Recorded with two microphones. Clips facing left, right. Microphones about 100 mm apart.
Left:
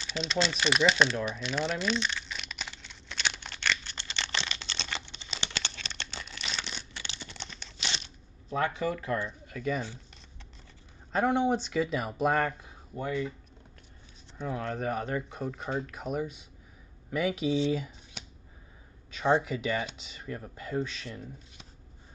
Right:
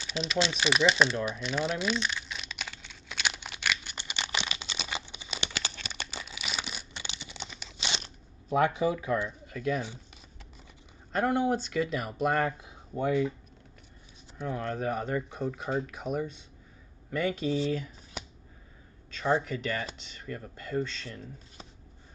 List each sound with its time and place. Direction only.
0.0 s crumpling: 5° right (ahead or behind)
8.5 s speech: 15° right (ahead or behind)
11.1 s speech: centre (ahead or behind)
12.9 s speech: 20° right (ahead or behind)
14.4 s speech: centre (ahead or behind)
19.0 s speech: 15° left (ahead or behind)